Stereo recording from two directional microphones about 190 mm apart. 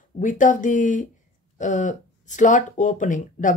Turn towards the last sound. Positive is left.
turn(degrees=40)  # may be behind; listen again after turning